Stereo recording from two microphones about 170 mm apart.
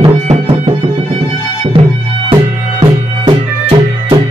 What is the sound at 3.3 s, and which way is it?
Music, 30° right (ahead or behind).